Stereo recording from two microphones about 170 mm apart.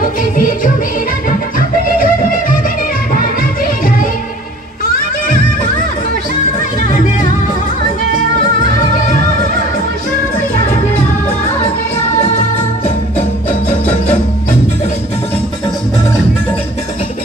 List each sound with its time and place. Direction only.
0.0 s music: 55° left (ahead or behind)
1.6 s music: 55° left (ahead or behind)